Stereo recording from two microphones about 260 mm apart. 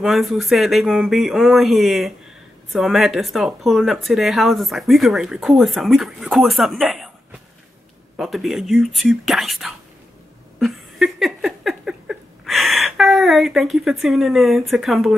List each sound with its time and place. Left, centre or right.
0.0 s speech: centre
8.2 s speech: centre
10.6 s a sound: centre